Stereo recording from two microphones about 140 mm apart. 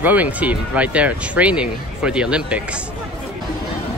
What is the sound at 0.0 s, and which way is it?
Speech, 10° right (ahead or behind).